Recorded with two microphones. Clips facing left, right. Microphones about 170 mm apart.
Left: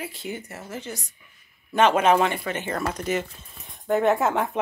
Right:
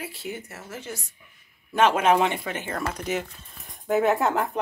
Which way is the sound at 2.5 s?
10° right (ahead or behind).